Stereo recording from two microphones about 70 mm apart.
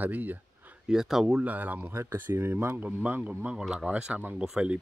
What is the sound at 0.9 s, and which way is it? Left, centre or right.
Speech, centre.